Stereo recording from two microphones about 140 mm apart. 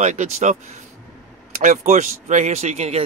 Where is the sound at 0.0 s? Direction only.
60° right (ahead or behind).